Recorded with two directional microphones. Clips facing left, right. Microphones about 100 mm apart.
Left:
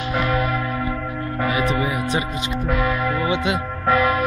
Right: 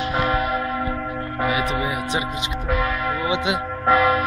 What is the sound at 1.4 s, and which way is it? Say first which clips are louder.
Music: left 1 dB; 10° right (ahead or behind).